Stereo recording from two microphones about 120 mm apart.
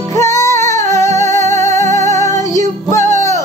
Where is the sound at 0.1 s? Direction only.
25° left (ahead or behind).